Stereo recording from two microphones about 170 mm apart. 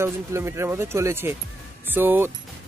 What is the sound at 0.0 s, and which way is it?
Speech, 15° right (ahead or behind).